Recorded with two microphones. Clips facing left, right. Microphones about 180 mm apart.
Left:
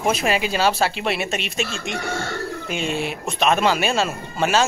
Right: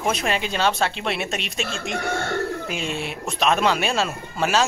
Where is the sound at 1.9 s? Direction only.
55° right (ahead or behind).